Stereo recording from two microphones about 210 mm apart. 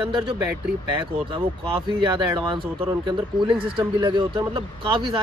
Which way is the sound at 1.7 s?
25° right (ahead or behind).